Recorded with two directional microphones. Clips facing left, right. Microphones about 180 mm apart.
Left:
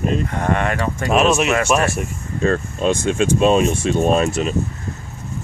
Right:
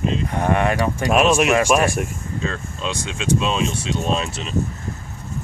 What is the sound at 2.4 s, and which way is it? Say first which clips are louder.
Speech: left 10 dB; 50° left (ahead or behind).